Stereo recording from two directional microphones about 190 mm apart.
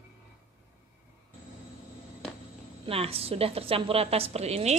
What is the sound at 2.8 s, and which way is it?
A woman's voice, 30° right (ahead or behind).